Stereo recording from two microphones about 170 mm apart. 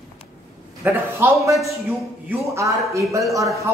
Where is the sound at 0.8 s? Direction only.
15° right (ahead or behind).